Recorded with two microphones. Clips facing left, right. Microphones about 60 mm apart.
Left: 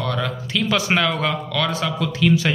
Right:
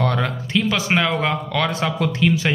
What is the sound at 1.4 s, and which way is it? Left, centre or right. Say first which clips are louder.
Speech: right 1 dB; right.